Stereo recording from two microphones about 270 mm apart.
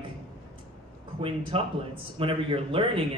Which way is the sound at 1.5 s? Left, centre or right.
Centre.